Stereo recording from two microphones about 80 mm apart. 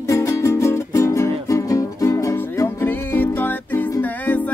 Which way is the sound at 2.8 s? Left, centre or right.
Left.